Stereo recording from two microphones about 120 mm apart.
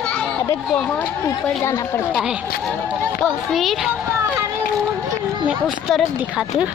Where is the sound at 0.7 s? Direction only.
15° left (ahead or behind).